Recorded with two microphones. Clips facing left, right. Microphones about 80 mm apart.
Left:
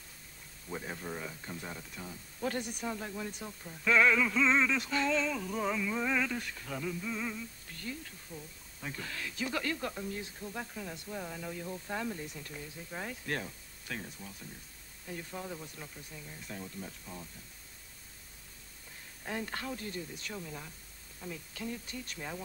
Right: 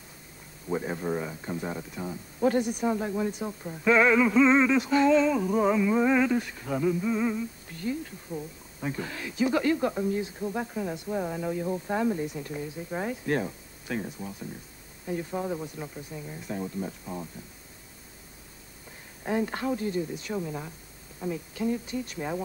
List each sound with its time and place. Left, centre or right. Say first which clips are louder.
0.7 s synthetic singing: right 10 dB; right
8.3 s speech: right 13 dB; centre
11.1 s synthetic singing: right 10 dB; right
12.9 s speech: right 9 dB; centre
15.0 s synthetic singing: right 11 dB; centre
15.6 s speech: right 10 dB; centre
17.0 s speech: right 10 dB; right
19.2 s speech: right 10 dB; centre